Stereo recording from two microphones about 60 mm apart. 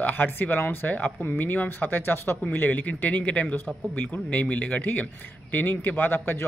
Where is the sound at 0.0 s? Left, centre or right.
Left.